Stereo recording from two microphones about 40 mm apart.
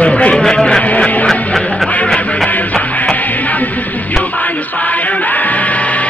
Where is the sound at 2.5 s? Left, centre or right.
Left.